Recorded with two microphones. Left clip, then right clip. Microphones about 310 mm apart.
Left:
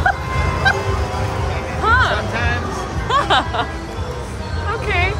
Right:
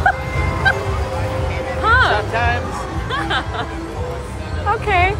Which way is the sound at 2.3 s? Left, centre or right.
Centre.